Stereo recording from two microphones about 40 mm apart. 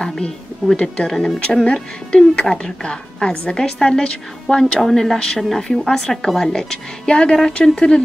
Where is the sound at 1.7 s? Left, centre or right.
Left.